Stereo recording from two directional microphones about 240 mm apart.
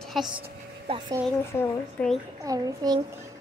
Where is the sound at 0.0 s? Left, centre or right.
Centre.